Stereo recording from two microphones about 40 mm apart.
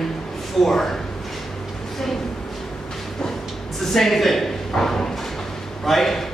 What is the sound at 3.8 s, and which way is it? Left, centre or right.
A man's voice, centre.